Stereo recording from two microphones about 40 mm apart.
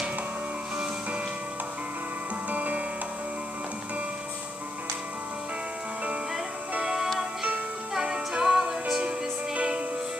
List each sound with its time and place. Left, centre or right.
2.5 s music: right
6.8 s music: centre
9.5 s music: right